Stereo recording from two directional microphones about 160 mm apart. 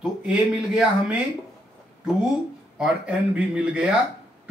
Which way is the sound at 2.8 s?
5° right (ahead or behind).